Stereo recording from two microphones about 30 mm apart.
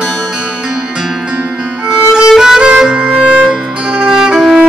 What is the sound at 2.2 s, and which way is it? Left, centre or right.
Violin, centre.